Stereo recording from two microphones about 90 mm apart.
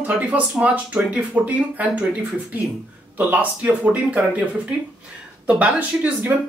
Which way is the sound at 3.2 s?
15° right (ahead or behind).